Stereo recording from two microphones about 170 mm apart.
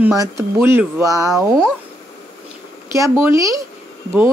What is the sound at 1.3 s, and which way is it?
Speech, 5° left (ahead or behind).